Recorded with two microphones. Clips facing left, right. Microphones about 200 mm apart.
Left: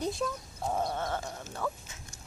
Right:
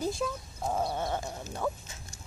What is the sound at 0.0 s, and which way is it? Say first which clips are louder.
Chicken: right 1 dB; 5° right (ahead or behind).